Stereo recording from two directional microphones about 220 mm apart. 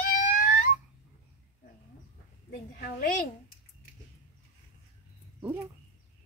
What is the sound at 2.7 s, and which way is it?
Speech, 40° left (ahead or behind).